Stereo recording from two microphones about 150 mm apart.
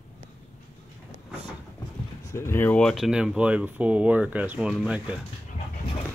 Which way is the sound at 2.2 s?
20° left (ahead or behind).